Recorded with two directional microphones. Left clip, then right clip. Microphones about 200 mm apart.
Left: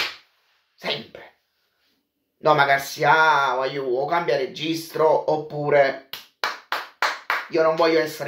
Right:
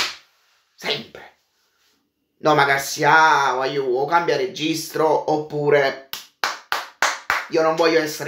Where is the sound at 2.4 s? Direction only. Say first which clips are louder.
Right 1 dB; 10° right (ahead or behind).